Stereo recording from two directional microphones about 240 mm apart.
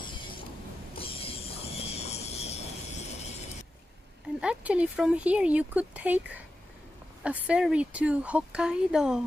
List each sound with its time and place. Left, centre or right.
0.0 s a sound: centre
0.9 s mechanisms: left
4.4 s speech: centre
7.2 s speech: centre